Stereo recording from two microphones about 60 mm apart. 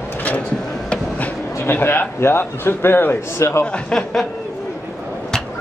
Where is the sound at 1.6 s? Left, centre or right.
Left.